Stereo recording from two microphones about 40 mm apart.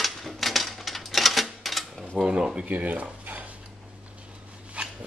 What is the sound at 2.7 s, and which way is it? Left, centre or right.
Speech, right.